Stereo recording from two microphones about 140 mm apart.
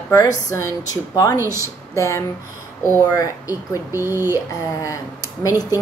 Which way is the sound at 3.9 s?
15° right (ahead or behind).